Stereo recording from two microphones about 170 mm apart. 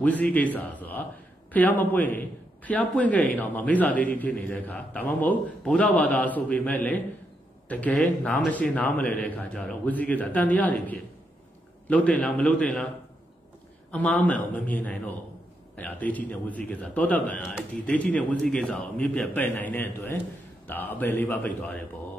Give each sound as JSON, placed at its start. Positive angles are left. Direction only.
{"t": 0.0, "sound": "a man's voice", "side_deg": 10}
{"t": 13.9, "sound": "a man's voice", "side_deg": 10}